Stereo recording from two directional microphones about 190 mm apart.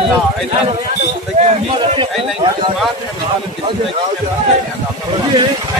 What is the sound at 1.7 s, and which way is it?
Speech, 25° right (ahead or behind).